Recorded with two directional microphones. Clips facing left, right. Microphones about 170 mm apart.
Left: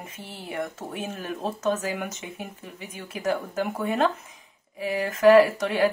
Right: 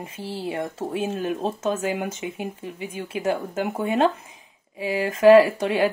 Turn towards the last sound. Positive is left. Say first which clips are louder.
# right 2 dB
turn(degrees=-30)  # may be behind; listen again after turning